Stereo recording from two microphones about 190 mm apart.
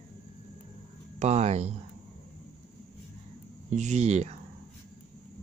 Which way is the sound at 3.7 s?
40° right (ahead or behind).